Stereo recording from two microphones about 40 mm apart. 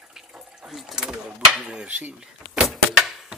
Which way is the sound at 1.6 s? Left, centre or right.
Right.